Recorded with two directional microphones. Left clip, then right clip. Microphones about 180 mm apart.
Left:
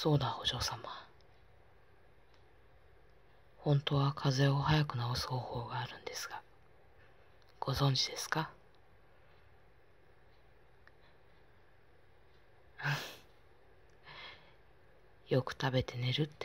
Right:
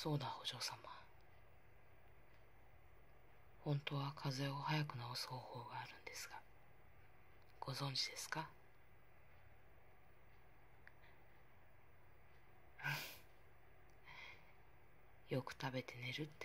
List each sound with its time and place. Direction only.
0.0 s speech: 20° left (ahead or behind)
3.6 s speech: 20° left (ahead or behind)
7.5 s speech: 20° left (ahead or behind)
12.7 s a sound: 20° left (ahead or behind)
14.0 s gasp: 15° left (ahead or behind)
15.2 s speech: 20° left (ahead or behind)